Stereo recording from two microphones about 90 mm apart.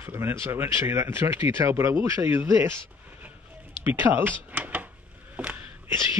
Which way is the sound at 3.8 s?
20° right (ahead or behind).